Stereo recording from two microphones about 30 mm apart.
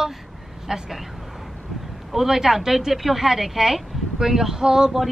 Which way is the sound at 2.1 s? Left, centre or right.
Centre.